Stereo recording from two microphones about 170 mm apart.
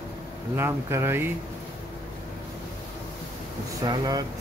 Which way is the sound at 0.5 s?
15° right (ahead or behind).